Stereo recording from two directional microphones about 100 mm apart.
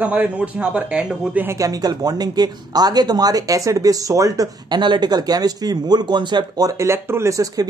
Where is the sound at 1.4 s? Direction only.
35° right (ahead or behind).